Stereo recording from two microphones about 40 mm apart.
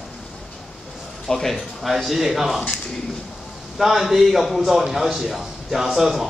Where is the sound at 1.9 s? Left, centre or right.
Centre.